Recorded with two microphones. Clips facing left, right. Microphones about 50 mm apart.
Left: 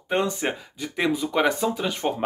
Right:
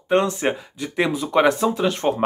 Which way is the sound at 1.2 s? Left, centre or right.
Right.